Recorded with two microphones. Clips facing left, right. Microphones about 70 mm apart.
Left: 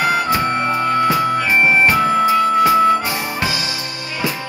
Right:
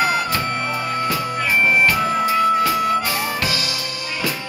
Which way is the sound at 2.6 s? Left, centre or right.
Left.